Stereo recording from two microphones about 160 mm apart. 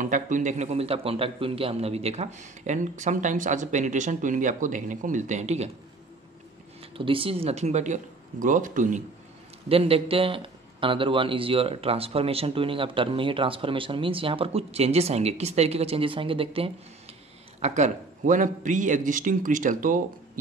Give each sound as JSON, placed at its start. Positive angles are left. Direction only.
{"t": 0.0, "sound": "a man's voice", "side_deg": -55}
{"t": 6.8, "sound": "a man's voice", "side_deg": -35}
{"t": 9.7, "sound": "a man's voice", "side_deg": -35}
{"t": 17.6, "sound": "a man's voice", "side_deg": -45}